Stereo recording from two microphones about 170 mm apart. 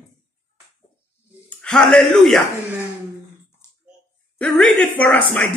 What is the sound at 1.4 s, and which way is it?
Speech, 5° left (ahead or behind).